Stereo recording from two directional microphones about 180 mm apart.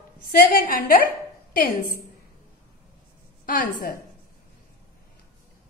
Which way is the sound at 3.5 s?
50° left (ahead or behind).